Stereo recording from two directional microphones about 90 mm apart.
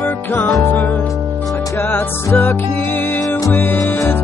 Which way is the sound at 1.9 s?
25° left (ahead or behind).